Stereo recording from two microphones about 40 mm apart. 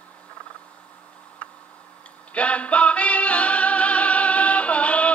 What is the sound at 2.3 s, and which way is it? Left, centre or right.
Music, left.